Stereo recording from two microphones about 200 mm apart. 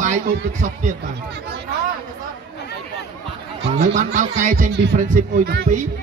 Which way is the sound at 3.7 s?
40° right (ahead or behind).